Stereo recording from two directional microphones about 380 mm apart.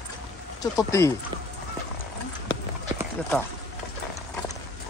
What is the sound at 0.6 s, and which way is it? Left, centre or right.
Speech, centre.